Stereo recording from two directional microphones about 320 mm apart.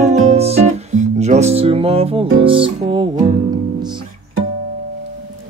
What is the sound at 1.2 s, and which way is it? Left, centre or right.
Speech, right.